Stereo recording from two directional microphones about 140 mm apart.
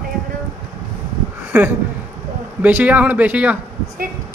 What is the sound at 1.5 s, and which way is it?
Speech, 15° right (ahead or behind).